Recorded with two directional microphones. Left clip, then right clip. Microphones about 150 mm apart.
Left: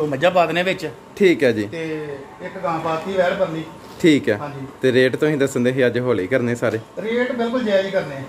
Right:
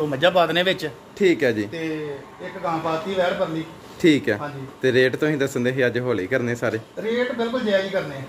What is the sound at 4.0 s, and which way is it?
A man's voice, centre (ahead or behind).